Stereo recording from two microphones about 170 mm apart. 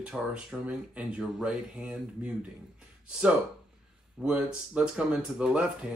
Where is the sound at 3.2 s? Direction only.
5° right (ahead or behind).